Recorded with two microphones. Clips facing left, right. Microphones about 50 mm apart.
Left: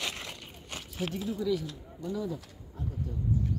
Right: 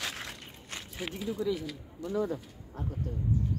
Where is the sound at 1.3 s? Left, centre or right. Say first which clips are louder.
Left 1 dB; centre.